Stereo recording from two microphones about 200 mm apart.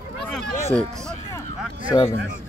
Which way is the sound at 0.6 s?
15° left (ahead or behind).